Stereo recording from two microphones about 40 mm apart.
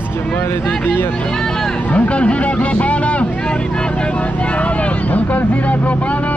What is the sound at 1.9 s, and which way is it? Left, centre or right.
Speech, left.